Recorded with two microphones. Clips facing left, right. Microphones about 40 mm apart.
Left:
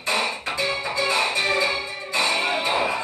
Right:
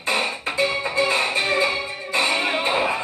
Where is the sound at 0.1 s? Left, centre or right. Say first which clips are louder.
Right 1 dB; right.